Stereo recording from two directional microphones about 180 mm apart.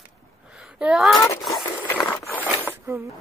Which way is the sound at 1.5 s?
15° left (ahead or behind).